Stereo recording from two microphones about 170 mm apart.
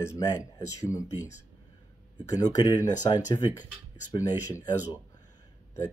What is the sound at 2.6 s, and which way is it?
Speech, 25° left (ahead or behind).